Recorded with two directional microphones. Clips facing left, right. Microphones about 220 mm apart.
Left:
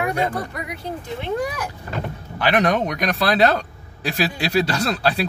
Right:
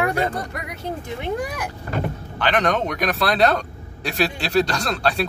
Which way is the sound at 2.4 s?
10° left (ahead or behind).